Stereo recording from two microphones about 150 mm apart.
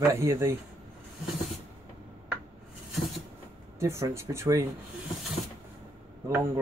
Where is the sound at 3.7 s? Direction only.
20° right (ahead or behind).